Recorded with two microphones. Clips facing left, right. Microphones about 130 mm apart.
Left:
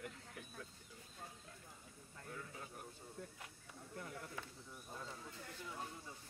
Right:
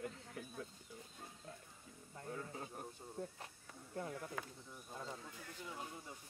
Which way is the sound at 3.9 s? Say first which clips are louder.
Right 5 dB; 30° right (ahead or behind).